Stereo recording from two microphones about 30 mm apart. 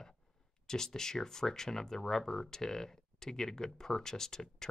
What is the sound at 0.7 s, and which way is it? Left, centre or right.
Speech, centre.